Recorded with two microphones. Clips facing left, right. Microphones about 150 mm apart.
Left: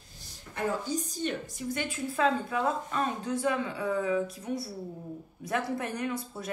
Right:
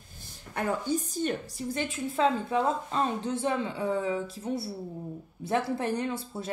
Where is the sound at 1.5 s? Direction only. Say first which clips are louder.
Right 1 dB; 30° right (ahead or behind).